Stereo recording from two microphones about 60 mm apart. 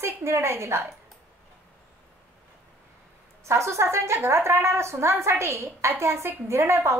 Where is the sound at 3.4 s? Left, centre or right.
Right.